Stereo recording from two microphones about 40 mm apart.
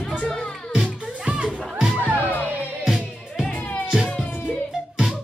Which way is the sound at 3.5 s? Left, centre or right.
Left.